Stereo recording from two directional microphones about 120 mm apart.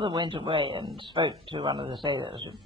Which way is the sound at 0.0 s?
40° right (ahead or behind).